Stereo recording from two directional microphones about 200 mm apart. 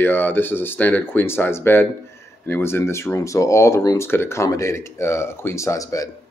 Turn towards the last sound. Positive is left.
turn(degrees=15)  # may be behind; listen again after turning